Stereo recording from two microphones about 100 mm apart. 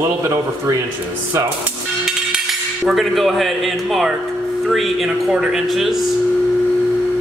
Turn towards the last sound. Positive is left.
turn(degrees=0)  # may be behind; listen again after turning